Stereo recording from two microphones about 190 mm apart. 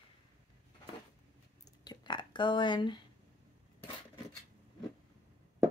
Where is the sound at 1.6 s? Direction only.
20° left (ahead or behind).